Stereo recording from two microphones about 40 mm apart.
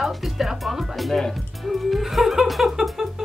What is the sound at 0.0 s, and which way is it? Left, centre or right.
Speech, centre.